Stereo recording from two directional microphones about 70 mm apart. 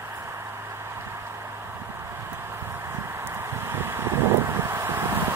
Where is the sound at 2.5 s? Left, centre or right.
Right.